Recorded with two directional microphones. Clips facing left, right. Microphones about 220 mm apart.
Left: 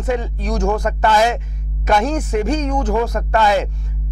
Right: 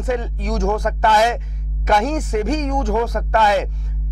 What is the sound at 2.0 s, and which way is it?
Speech, 10° left (ahead or behind).